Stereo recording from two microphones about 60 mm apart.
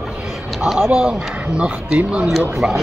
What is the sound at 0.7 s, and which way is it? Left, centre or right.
Speech, right.